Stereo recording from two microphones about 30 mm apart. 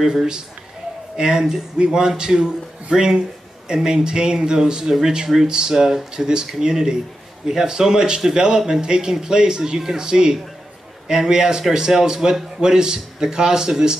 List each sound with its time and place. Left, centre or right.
0.0 s a man's voice: centre